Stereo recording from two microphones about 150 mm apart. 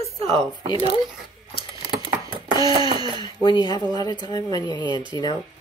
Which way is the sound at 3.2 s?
30° left (ahead or behind).